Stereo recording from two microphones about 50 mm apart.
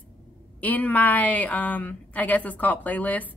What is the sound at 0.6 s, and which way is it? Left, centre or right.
A woman's voice, left.